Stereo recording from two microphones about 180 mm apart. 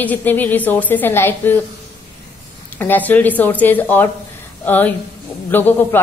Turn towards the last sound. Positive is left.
turn(degrees=10)  # may be behind; listen again after turning